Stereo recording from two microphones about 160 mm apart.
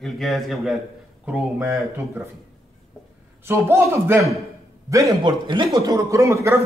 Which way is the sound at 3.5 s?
15° right (ahead or behind).